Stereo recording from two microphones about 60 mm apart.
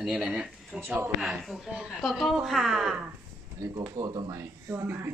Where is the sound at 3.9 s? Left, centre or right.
Right.